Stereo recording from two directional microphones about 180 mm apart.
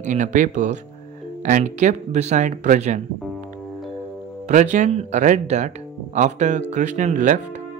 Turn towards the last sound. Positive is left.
turn(degrees=-45)  # may be behind; listen again after turning